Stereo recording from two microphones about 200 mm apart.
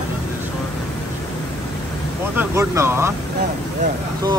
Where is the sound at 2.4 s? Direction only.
15° right (ahead or behind).